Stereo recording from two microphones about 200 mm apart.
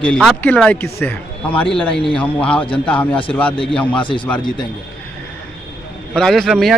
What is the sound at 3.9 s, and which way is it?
Speech, 25° left (ahead or behind).